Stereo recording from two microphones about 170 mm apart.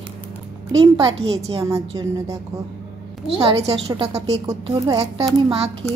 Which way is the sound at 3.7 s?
30° right (ahead or behind).